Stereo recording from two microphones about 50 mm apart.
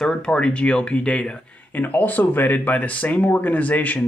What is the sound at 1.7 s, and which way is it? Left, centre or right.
Speech, left.